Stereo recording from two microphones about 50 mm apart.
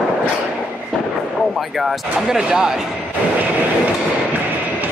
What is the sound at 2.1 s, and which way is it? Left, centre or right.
Speech, centre.